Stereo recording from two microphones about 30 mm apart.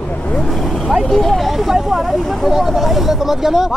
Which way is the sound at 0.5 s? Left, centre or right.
Centre.